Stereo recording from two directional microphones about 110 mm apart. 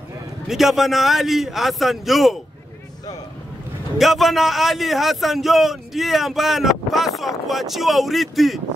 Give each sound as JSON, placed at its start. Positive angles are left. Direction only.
{"t": 0.5, "sound": "a man's voice", "side_deg": 0}
{"t": 4.0, "sound": "a man's voice", "side_deg": 0}